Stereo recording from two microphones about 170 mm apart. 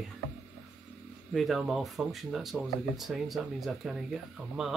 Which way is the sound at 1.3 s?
Centre (ahead or behind).